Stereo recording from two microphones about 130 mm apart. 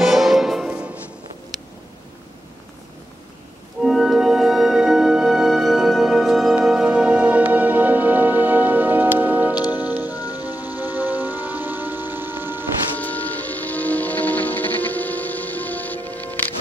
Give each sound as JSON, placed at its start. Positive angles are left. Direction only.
{"t": 0.0, "sound": "music", "side_deg": 0}
{"t": 3.8, "sound": "music", "side_deg": 0}
{"t": 10.0, "sound": "music", "side_deg": 30}
{"t": 10.4, "sound": "music", "side_deg": -15}
{"t": 12.9, "sound": "music", "side_deg": 10}